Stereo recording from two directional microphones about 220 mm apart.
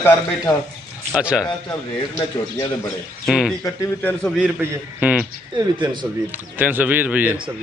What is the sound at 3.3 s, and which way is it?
Speech, 5° right (ahead or behind).